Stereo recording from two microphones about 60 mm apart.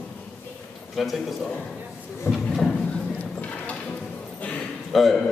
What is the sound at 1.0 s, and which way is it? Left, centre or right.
Speech, centre.